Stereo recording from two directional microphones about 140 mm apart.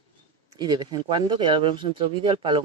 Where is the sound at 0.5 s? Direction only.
30° right (ahead or behind).